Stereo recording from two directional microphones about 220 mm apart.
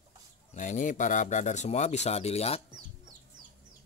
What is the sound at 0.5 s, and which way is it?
Speech, 35° left (ahead or behind).